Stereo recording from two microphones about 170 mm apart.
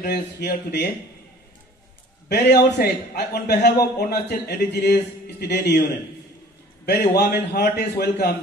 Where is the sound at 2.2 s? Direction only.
75° left (ahead or behind).